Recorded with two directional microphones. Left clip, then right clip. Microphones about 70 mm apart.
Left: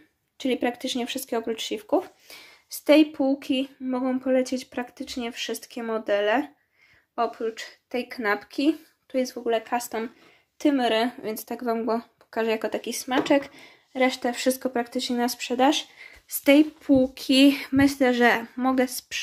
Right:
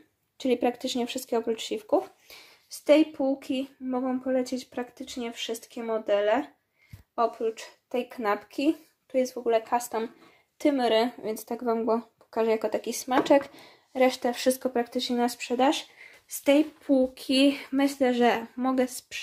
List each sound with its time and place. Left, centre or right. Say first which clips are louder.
0.4 s speech: even; right
2.2 s speech: left 4 dB; centre
7.5 s speech: left 1 dB; right
9.4 s speech: even; centre
10.6 s speech: left 1 dB; centre
12.9 s speech: right 1 dB; right
14.1 s speech: left 1 dB; centre